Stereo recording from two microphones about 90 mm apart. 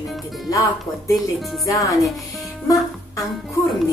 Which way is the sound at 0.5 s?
40° left (ahead or behind).